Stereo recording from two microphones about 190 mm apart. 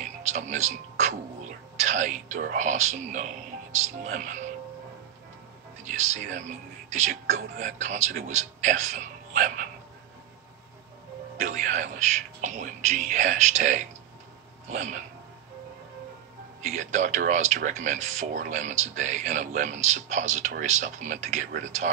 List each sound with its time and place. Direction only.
0.0 s music: 40° right (ahead or behind)
1.9 s speech: 40° right (ahead or behind)
5.9 s speech: 40° right (ahead or behind)
11.4 s speech: 40° right (ahead or behind)
16.6 s speech: 40° right (ahead or behind)